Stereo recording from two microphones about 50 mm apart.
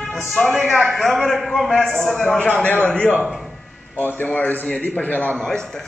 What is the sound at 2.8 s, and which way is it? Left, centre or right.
Speech, left.